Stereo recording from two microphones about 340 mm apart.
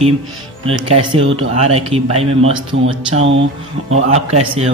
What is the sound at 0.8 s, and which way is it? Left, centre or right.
A man's voice, centre.